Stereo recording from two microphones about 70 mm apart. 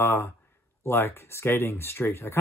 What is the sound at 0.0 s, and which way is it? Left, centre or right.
Speech, left.